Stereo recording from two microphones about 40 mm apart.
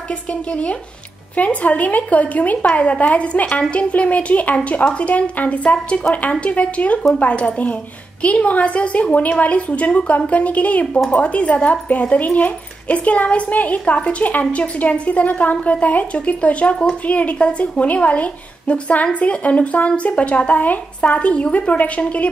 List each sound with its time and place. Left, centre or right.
0.3 s speech: left